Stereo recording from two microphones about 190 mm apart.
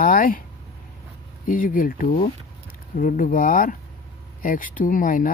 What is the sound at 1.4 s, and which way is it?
Speech, 45° left (ahead or behind).